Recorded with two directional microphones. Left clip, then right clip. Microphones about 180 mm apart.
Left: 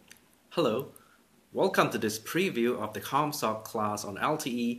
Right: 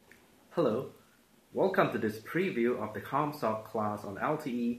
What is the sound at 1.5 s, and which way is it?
Speech, 20° left (ahead or behind).